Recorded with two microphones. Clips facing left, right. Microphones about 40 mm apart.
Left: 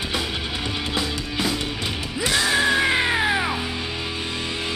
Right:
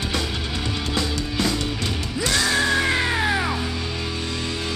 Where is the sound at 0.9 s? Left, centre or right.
Centre.